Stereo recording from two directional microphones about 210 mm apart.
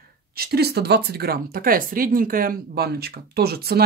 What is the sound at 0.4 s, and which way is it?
Speech, 50° right (ahead or behind).